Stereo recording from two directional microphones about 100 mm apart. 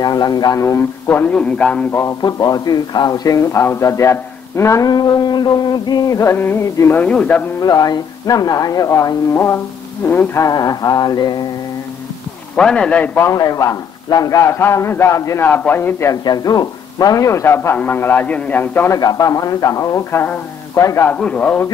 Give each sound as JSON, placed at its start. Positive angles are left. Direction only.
{"t": 0.0, "sound": "a man's voice", "side_deg": 40}
{"t": 0.6, "sound": "a man's voice", "side_deg": 25}
{"t": 2.2, "sound": "a man's voice", "side_deg": 40}
{"t": 4.8, "sound": "music", "side_deg": 40}
{"t": 6.3, "sound": "a man's voice", "side_deg": 25}
{"t": 7.0, "sound": "a man's voice", "side_deg": 15}
{"t": 7.6, "sound": "a man's voice", "side_deg": 40}
{"t": 10.5, "sound": "a man's voice", "side_deg": 40}
{"t": 12.5, "sound": "a man's voice", "side_deg": 10}
{"t": 13.2, "sound": "a man's voice", "side_deg": 35}
{"t": 15.4, "sound": "a man's voice", "side_deg": 20}
{"t": 16.1, "sound": "a man's voice", "side_deg": 40}
{"t": 18.9, "sound": "a man's voice", "side_deg": 40}
{"t": 21.1, "sound": "a man's voice", "side_deg": 15}